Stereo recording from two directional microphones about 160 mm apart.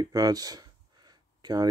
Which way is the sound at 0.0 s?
25° right (ahead or behind).